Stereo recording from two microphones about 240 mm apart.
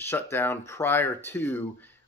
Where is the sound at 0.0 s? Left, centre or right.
Centre.